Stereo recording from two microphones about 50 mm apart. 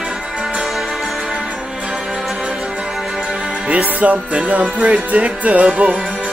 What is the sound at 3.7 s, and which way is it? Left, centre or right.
Music, right.